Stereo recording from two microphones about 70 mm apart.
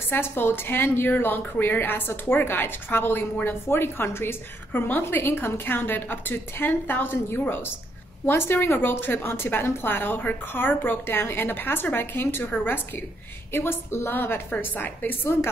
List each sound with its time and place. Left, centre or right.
0.1 s a woman's voice: left
13.5 s a woman's voice: left